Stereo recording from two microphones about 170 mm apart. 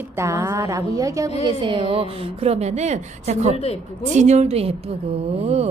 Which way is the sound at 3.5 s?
35° left (ahead or behind).